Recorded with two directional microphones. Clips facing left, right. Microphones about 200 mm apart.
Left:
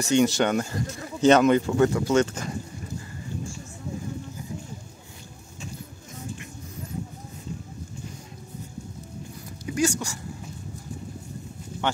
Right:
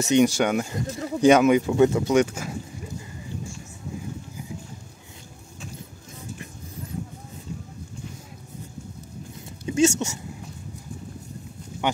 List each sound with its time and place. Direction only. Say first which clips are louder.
0.0 s speech: right 2 dB; 15° right (ahead or behind)
9.7 s speech: right 5 dB; 25° right (ahead or behind)
11.8 s a sound: right 2 dB; 15° right (ahead or behind)